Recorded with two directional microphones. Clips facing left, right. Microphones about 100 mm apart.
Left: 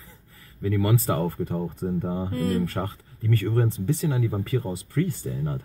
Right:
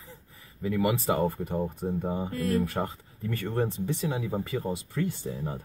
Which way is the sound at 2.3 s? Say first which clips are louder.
Left 2 dB; 30° left (ahead or behind).